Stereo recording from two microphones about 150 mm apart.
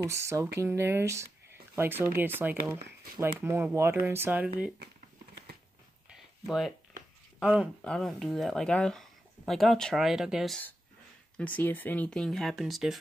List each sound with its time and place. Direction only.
0.0 s speech: 20° right (ahead or behind)
6.1 s a sound: centre (ahead or behind)
7.3 s speech: 5° right (ahead or behind)
7.8 s speech: 5° left (ahead or behind)
11.3 s speech: 10° left (ahead or behind)